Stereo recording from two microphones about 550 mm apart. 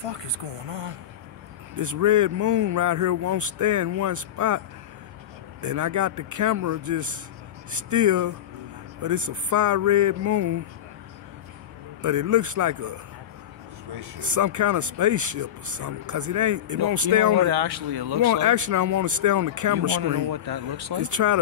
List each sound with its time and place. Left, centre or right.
0.0 s speech: right
1.8 s speech: right
5.6 s speech: right
12.0 s speech: right
14.2 s speech: right
18.2 s speech: right